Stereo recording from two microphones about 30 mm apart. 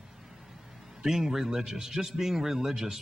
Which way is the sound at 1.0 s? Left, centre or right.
Centre.